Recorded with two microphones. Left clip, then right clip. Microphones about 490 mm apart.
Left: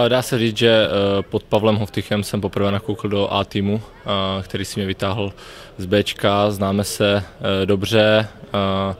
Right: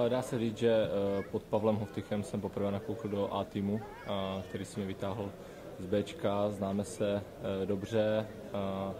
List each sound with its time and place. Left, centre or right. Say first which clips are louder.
0.0 s speech: left 15 dB; left